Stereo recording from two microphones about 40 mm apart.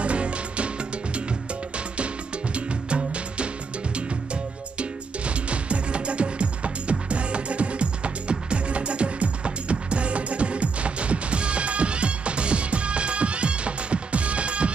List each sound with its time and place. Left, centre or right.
0.0 s music: right
2.5 s music: right